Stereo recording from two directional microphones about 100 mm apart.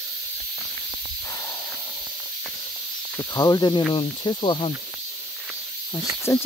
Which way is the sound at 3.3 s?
40° left (ahead or behind).